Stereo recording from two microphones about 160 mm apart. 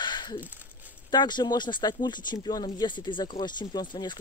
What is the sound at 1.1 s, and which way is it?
Speech, 30° left (ahead or behind).